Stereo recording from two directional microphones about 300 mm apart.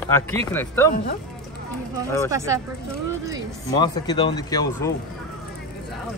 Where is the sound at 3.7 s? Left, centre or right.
Centre.